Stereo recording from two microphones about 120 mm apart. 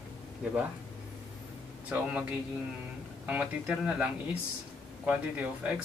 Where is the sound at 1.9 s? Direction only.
10° right (ahead or behind).